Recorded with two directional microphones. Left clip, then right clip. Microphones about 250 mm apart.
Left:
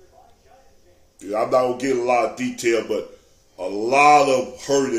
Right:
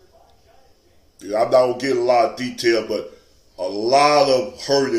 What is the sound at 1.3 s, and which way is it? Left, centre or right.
Speech, centre.